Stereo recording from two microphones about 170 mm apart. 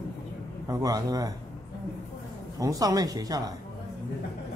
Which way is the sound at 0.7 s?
20° right (ahead or behind).